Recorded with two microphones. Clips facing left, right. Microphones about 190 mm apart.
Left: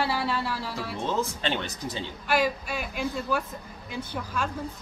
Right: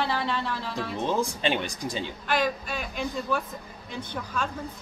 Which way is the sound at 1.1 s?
15° right (ahead or behind).